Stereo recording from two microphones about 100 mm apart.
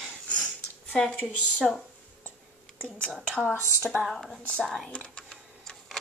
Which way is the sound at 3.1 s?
5° right (ahead or behind).